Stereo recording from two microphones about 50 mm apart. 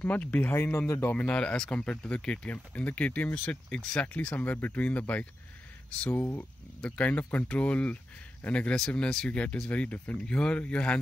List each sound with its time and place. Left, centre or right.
0.0 s speech: left
0.6 s speech: left
1.1 s speech: left
10.1 s speech: centre